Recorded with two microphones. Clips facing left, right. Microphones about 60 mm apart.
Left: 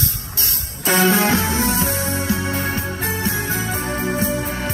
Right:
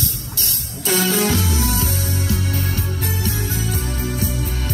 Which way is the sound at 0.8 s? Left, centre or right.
Left.